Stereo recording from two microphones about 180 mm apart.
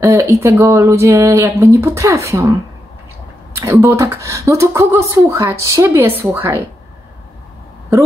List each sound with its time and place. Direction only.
0.0 s speech: 15° right (ahead or behind)
3.5 s speech: 15° right (ahead or behind)